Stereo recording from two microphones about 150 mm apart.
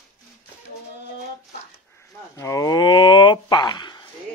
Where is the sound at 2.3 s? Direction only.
25° left (ahead or behind).